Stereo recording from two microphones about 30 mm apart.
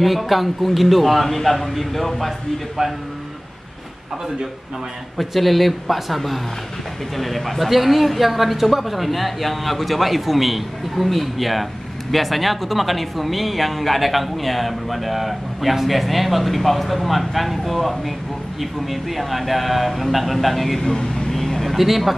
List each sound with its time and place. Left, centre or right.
0.0 s speech: centre
5.1 s speech: centre
20.8 s speech: left
21.3 s vehicle: centre
21.7 s speech: centre